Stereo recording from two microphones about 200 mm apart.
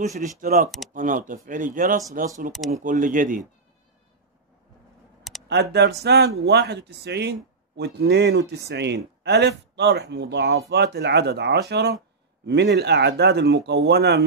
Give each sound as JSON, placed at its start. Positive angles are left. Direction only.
{"t": 0.2, "sound": "speech", "side_deg": -40}
{"t": 0.7, "sound": "speech", "side_deg": 0}
{"t": 0.9, "sound": "speech", "side_deg": -40}
{"t": 2.5, "sound": "speech", "side_deg": 0}
{"t": 2.8, "sound": "speech", "side_deg": -40}
{"t": 5.5, "sound": "speech", "side_deg": -55}